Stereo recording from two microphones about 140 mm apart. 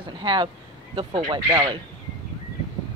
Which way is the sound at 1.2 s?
30° right (ahead or behind).